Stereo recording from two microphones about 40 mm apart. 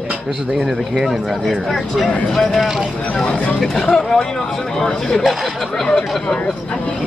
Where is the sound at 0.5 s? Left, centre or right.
Centre.